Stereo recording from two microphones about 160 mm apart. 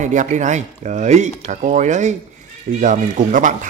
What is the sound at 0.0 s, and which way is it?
Speech, 50° right (ahead or behind).